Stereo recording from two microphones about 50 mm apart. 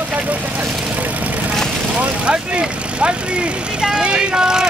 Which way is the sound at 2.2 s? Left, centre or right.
Right.